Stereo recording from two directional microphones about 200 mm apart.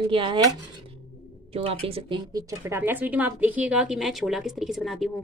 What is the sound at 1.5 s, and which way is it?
Speech, 30° right (ahead or behind).